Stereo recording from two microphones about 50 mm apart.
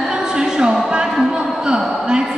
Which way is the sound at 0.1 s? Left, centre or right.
Centre.